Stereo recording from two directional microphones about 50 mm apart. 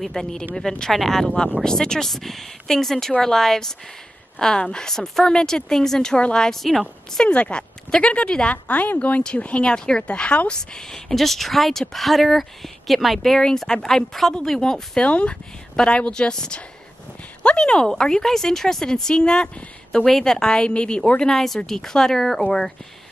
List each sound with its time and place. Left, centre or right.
0.0 s speech: centre
7.2 s speech: left
8.6 s speech: left
21.2 s speech: centre